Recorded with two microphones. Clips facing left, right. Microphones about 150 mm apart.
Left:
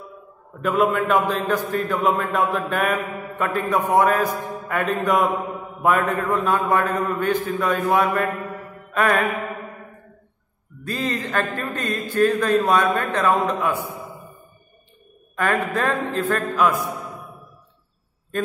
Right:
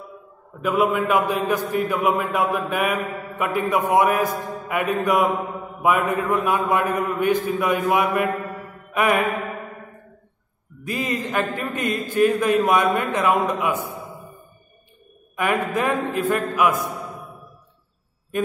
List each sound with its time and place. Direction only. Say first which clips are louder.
0.6 s a man's voice: even; 5° right (ahead or behind)
5.8 s mantra: even; 10° right (ahead or behind)
6.2 s a man's voice: even; 15° right (ahead or behind)
10.8 s a man's voice: even; 15° right (ahead or behind)
15.3 s a man's voice: even; 15° right (ahead or behind)